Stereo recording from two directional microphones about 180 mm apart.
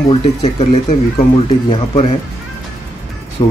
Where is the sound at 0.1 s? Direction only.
35° left (ahead or behind).